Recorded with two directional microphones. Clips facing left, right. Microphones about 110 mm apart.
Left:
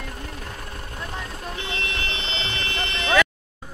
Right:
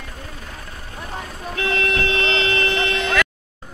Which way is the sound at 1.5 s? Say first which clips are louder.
Right 11 dB; 85° right.